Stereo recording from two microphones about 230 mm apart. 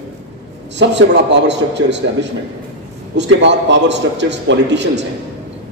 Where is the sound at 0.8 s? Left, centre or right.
Right.